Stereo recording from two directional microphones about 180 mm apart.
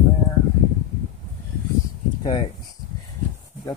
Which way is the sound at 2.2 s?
25° left (ahead or behind).